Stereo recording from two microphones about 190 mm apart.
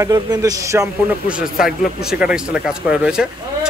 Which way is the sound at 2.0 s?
5° right (ahead or behind).